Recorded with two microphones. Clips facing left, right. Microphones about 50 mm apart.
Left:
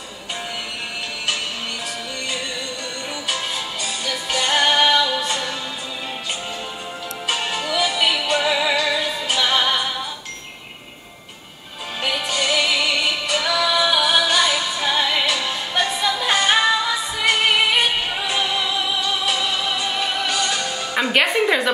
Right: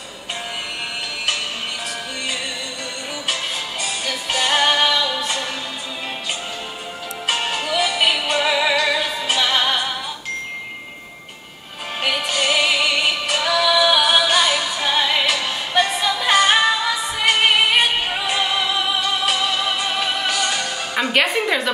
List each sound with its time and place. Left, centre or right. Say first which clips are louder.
4.0 s music: even; right
7.2 s music: right 2 dB; right
12.0 s music: right 2 dB; right
20.2 s music: right 1 dB; right
20.9 s a woman's voice: even; centre